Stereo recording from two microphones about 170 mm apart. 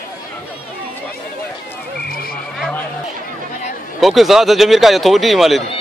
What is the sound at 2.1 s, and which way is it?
Horse, 60° left (ahead or behind).